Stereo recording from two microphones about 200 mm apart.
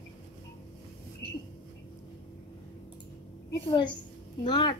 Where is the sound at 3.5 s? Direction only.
20° left (ahead or behind).